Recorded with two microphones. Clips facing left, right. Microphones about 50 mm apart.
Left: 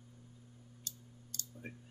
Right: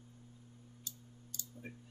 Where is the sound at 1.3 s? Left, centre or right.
Left.